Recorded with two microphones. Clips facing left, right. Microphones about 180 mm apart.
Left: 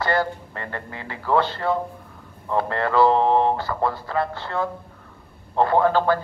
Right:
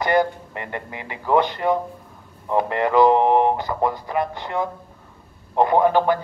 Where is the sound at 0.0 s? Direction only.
15° right (ahead or behind).